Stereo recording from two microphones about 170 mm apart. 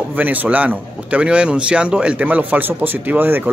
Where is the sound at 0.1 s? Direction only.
10° right (ahead or behind).